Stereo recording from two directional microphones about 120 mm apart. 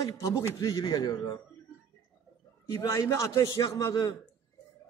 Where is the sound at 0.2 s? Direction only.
25° left (ahead or behind).